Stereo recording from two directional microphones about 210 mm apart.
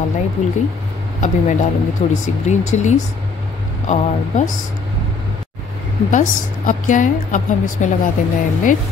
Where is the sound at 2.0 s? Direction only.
30° left (ahead or behind).